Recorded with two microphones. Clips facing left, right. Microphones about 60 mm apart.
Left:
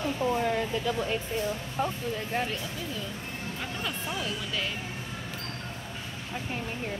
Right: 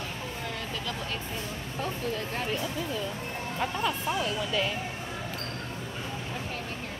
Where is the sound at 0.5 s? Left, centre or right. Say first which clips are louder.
Left 7 dB; centre.